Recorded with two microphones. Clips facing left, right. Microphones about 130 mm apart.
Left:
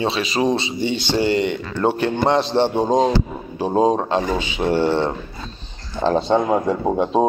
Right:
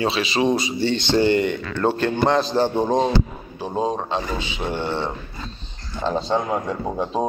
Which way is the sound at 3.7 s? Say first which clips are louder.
Left 6 dB; 85° left.